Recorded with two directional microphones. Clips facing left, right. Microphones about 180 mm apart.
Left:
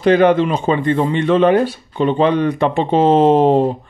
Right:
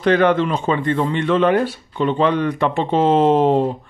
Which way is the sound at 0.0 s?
15° left (ahead or behind).